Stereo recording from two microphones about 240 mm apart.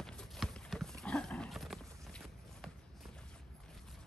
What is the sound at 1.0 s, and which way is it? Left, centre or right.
Horse, centre.